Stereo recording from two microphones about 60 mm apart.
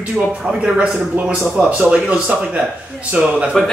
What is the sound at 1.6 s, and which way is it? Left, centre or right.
A man's voice, centre.